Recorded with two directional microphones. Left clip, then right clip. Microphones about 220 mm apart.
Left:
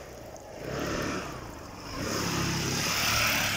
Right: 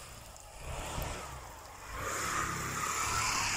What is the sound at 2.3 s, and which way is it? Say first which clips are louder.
Vehicle: left 4 dB; 55° left (ahead or behind).